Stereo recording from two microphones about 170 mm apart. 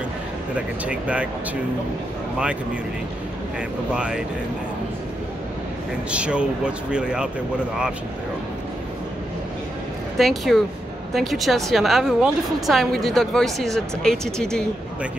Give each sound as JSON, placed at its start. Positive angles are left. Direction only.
{"t": 0.8, "sound": "speech", "side_deg": -5}
{"t": 3.9, "sound": "a woman's voice", "side_deg": -5}
{"t": 6.0, "sound": "a woman's voice", "side_deg": -5}
{"t": 10.1, "sound": "a woman's voice", "side_deg": 0}